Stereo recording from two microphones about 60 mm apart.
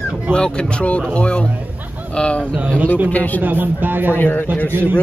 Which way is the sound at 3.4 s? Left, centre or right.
Right.